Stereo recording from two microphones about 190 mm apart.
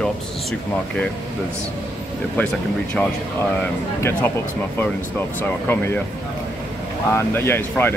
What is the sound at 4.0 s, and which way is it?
Speech, 15° left (ahead or behind).